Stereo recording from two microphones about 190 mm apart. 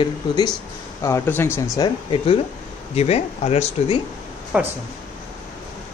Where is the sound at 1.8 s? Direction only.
25° left (ahead or behind).